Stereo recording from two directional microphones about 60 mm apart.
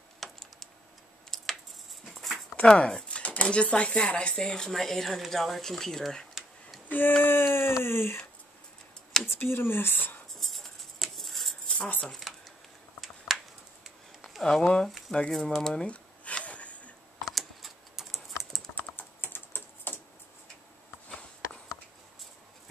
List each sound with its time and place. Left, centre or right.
0.2 s computer keyboard: centre
1.3 s a sound: centre
2.5 s speech: centre
6.9 s speech: left
9.2 s speech: left
10.4 s a sound: centre
13.3 s finger snapping: centre
14.4 s speech: centre
15.3 s a sound: centre
17.3 s typing: centre
18.8 s typing: left